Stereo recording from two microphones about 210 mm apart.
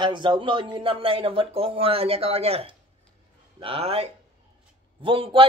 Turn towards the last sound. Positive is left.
turn(degrees=-25)  # may be behind; listen again after turning